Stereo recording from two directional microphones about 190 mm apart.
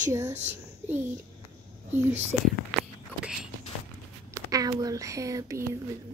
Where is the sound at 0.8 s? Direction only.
10° right (ahead or behind).